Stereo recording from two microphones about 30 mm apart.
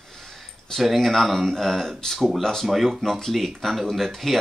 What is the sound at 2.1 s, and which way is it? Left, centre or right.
Speech, centre.